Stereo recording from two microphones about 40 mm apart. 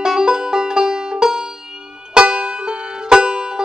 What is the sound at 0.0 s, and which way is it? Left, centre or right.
Music, centre.